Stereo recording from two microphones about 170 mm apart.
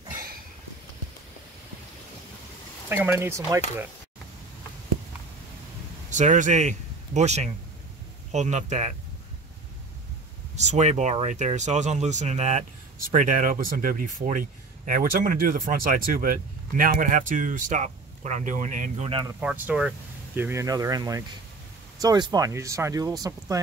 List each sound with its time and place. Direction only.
2.9 s speech: 15° right (ahead or behind)
6.0 s speech: 45° right (ahead or behind)
10.5 s speech: 45° right (ahead or behind)
19.4 s speech: 10° right (ahead or behind)